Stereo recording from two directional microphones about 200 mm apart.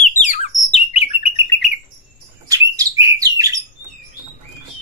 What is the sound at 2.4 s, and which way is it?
Bird, 15° right (ahead or behind).